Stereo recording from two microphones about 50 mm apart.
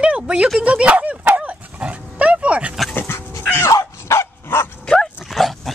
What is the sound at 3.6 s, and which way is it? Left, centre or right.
Dog, left.